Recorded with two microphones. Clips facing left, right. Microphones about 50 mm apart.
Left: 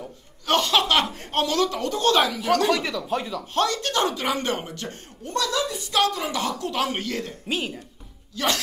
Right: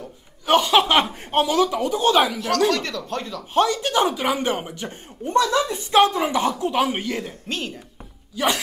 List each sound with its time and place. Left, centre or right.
0.5 s speech: centre
2.4 s speech: centre
3.5 s speech: centre
7.4 s speech: centre
8.4 s speech: centre